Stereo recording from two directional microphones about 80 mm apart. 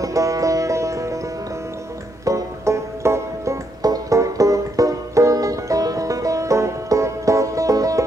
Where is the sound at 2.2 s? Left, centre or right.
Right.